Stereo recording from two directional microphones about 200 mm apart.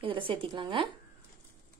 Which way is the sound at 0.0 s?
25° right (ahead or behind).